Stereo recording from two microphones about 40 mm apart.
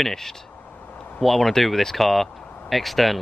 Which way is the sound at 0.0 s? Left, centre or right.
Centre.